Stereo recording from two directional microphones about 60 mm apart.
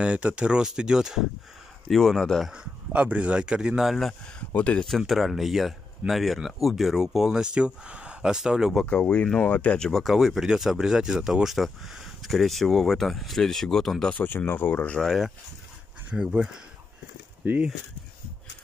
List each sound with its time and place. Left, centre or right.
0.0 s speech: right
1.9 s speech: centre
2.5 s a sound: centre
3.0 s speech: right
3.8 s speech: centre
4.6 s speech: left
4.8 s speech: centre
8.8 s speech: centre
9.8 s speech: centre
10.0 s speech: centre
14.2 s speech: left
15.0 s speech: centre
16.2 s speech: centre